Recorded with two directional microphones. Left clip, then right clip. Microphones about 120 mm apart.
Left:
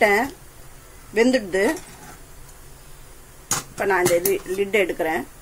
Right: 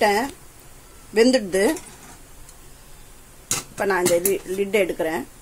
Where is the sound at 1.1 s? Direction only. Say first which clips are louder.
Right 1 dB; 35° right (ahead or behind).